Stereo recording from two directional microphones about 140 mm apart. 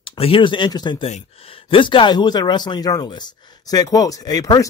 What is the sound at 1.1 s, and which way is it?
Speech, 50° left (ahead or behind).